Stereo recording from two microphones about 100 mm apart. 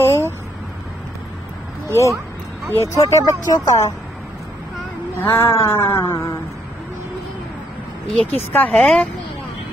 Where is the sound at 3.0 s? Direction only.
35° left (ahead or behind).